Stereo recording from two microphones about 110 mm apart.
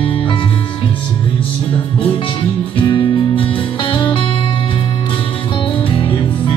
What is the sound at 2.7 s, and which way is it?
Music, 50° left (ahead or behind).